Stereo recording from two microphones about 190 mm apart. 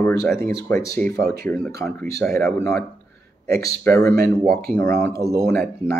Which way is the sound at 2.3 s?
50° right (ahead or behind).